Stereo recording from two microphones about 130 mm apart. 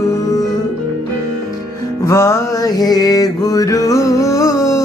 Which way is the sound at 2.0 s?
25° left (ahead or behind).